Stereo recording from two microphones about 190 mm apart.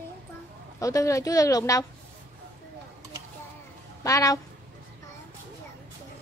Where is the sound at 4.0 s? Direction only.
15° left (ahead or behind).